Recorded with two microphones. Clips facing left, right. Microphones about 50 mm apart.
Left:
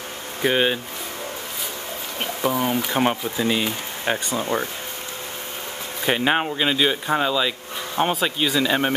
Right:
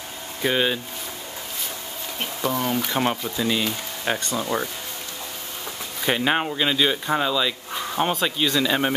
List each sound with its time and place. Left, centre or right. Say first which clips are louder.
0.4 s speech: left 2 dB; centre
2.4 s speech: left 2 dB; centre
6.0 s speech: left 1 dB; centre